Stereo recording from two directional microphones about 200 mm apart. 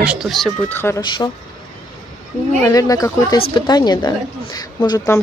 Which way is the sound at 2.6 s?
15° left (ahead or behind).